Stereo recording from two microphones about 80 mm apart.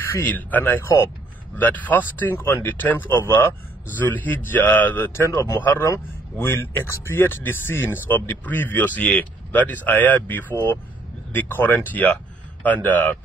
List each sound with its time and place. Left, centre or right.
0.1 s speech: left